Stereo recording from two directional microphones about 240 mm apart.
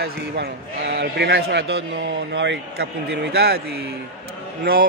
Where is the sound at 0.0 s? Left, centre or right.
Right.